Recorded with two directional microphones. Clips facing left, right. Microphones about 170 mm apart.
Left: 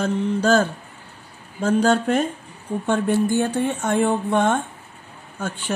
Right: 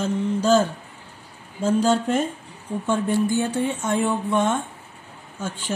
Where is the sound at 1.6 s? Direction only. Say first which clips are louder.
Left 2 dB; 65° left (ahead or behind).